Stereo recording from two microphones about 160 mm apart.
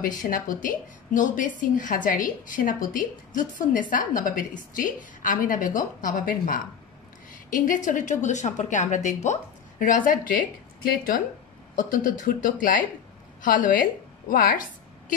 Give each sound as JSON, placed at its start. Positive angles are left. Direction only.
{"t": 0.2, "sound": "a woman's voice", "side_deg": 55}